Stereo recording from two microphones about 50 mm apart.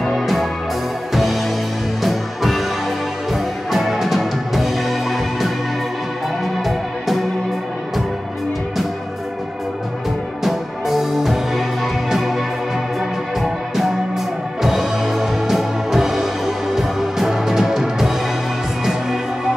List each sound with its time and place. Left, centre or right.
0.0 s music: centre
6.6 s music: centre
10.4 s music: centre
14.6 s music: centre